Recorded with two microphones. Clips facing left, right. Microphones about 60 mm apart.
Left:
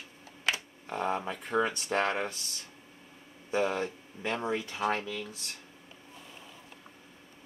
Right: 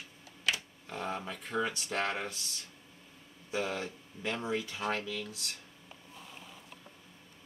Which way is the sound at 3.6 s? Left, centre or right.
Centre.